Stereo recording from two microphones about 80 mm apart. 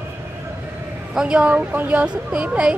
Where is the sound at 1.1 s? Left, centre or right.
Centre.